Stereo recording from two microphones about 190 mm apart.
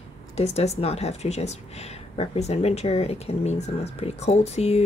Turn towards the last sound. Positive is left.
turn(degrees=35)  # may be behind; listen again after turning